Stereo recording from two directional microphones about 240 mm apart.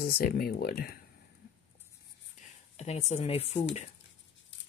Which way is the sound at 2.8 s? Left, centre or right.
Left.